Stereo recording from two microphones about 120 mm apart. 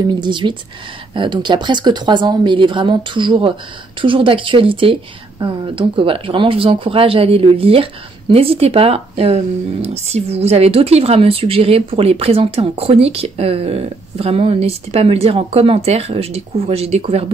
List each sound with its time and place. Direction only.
0.0 s speech: 40° right (ahead or behind); by 17.3 s 55° right (ahead or behind)